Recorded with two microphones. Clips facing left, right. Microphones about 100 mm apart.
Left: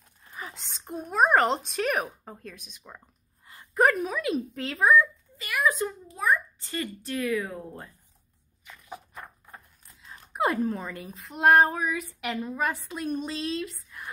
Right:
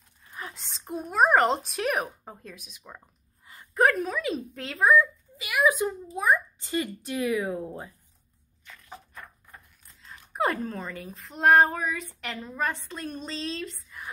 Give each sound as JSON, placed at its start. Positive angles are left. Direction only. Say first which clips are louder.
{"t": 0.3, "sound": "speech", "louder": "even", "side_deg": 0}
{"t": 8.6, "sound": "a sound", "louder": "left 3 dB", "side_deg": 10}
{"t": 10.3, "sound": "speech", "louder": "left 2 dB", "side_deg": 10}